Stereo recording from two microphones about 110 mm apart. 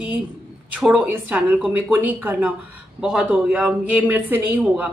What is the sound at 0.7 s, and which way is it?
A man's voice, 10° right (ahead or behind).